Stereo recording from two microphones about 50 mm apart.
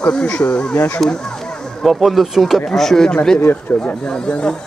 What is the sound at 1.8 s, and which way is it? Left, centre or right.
Speech, centre.